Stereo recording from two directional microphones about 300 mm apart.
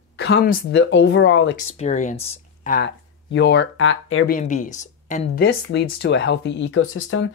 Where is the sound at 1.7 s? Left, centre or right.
Left.